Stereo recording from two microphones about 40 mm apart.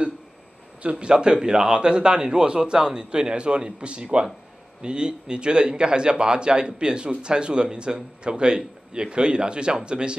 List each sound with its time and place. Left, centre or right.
0.9 s speech: right